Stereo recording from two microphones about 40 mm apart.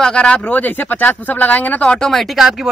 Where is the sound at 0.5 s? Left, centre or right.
Left.